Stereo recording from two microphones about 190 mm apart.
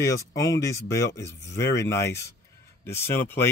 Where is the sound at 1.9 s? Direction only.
15° left (ahead or behind).